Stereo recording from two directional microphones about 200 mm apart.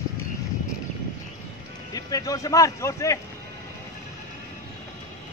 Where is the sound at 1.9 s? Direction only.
20° left (ahead or behind).